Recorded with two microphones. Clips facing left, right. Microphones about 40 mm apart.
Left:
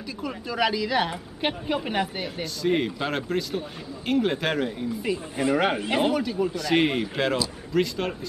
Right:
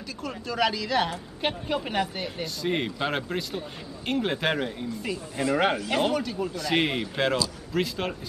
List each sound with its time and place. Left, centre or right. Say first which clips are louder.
0.2 s speech: left 1 dB; centre
2.4 s speech: left 4 dB; centre
5.0 s speech: left 3 dB; centre